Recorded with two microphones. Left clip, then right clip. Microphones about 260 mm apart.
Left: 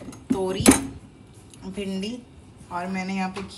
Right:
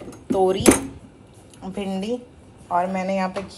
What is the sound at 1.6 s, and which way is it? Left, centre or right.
Speech, right.